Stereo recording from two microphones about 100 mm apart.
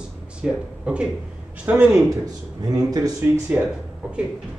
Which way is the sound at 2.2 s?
40° right (ahead or behind).